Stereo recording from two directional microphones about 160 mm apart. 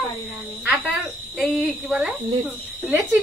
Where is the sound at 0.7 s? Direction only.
Centre (ahead or behind).